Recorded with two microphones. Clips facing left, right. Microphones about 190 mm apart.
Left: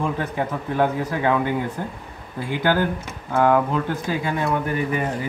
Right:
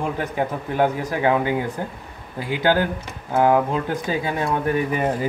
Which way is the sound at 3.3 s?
15° right (ahead or behind).